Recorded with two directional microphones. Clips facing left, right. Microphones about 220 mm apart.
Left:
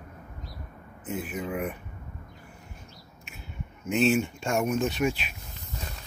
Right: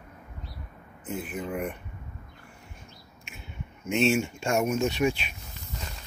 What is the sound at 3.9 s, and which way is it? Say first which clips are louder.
Speech: left 1 dB; centre (ahead or behind).